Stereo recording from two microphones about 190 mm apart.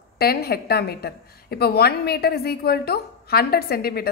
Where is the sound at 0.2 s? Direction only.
55° left (ahead or behind).